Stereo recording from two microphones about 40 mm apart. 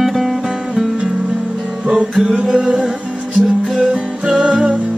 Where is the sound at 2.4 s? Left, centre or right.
Centre.